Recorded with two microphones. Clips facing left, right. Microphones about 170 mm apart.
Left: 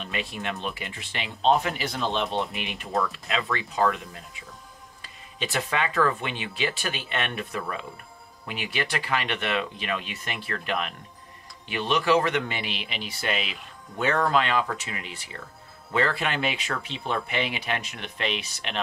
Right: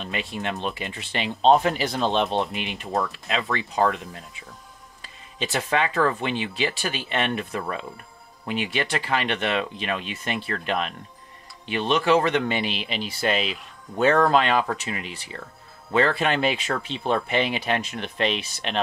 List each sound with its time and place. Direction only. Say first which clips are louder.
0.1 s speech: right 2 dB; 25° right (ahead or behind)
2.4 s speech: right 3 dB; 20° right (ahead or behind)
5.4 s speech: right 3 dB; 25° right (ahead or behind)